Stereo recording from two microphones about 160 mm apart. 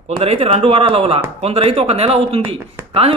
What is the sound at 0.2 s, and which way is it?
Speech, 40° right (ahead or behind).